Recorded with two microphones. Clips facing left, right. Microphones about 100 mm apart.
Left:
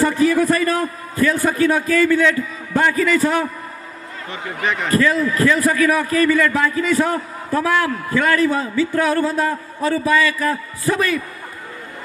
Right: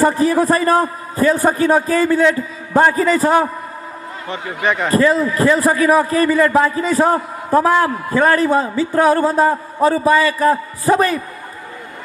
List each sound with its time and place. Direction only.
0.0 s a man's voice: 35° right (ahead or behind)
4.9 s a man's voice: 35° right (ahead or behind)